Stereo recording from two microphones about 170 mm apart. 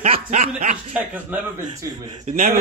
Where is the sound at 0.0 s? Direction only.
40° right (ahead or behind).